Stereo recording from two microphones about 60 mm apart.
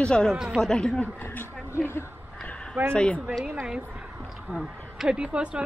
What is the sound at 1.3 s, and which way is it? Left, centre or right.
Speech, left.